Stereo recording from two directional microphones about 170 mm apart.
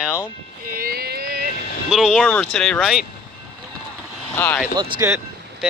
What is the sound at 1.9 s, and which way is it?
Speech, centre (ahead or behind).